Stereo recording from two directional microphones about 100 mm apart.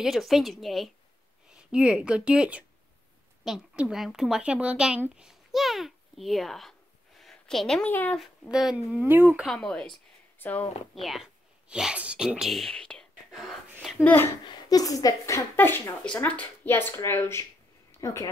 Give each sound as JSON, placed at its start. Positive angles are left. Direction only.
{"t": 0.0, "sound": "a woman's voice", "side_deg": 0}
{"t": 7.2, "sound": "a sound", "side_deg": 5}
{"t": 7.9, "sound": "a woman's voice", "side_deg": 15}
{"t": 8.2, "sound": "speech", "side_deg": -5}
{"t": 8.9, "sound": "speech", "side_deg": -20}
{"t": 9.5, "sound": "a woman's voice", "side_deg": 5}
{"t": 11.0, "sound": "speech", "side_deg": 0}
{"t": 13.9, "sound": "speech", "side_deg": 20}
{"t": 14.4, "sound": "speech", "side_deg": 45}